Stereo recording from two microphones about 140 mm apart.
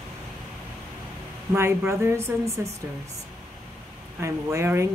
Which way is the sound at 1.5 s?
20° right (ahead or behind).